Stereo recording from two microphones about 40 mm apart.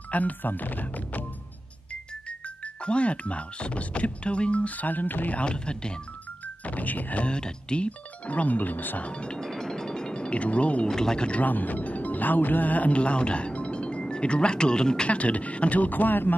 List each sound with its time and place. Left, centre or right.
0.1 s speech: left
2.2 s speech: left
5.4 s speech: left
6.4 s speech: left
7.2 s speech: left
9.0 s speech: left
9.4 s a sound: centre; by 10.9 s left
10.9 s speech: centre
11.4 s speech: left
15.0 s speech: left